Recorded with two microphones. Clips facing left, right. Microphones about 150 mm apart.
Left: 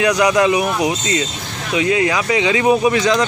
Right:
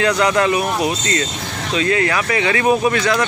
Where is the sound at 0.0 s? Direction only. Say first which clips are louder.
Left 2 dB; 15° left (ahead or behind).